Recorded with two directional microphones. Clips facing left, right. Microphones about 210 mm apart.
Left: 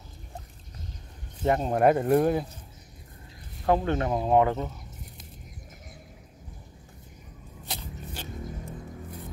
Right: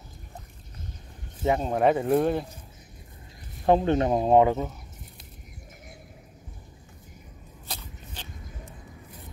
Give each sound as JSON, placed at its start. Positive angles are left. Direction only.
{"t": 1.4, "sound": "speech", "side_deg": 0}
{"t": 3.6, "sound": "speech", "side_deg": -20}
{"t": 7.7, "sound": "vehicle", "side_deg": 10}